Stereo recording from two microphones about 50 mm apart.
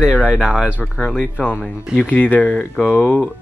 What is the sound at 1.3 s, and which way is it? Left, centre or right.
Speech, left.